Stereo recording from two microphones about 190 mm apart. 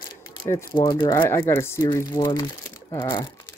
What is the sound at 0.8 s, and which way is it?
Speech, 25° left (ahead or behind).